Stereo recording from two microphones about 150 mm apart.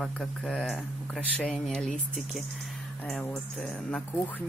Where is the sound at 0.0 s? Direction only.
5° left (ahead or behind).